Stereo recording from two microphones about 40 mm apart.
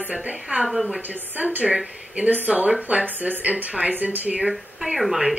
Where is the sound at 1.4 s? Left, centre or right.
Right.